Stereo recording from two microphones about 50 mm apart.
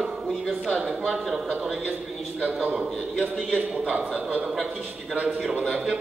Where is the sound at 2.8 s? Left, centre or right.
Right.